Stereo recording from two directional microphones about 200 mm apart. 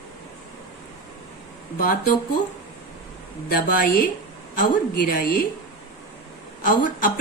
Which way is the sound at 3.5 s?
45° left (ahead or behind).